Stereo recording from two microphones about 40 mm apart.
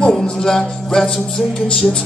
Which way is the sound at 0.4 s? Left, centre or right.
Centre.